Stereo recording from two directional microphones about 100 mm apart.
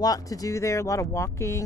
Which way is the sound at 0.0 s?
40° left (ahead or behind).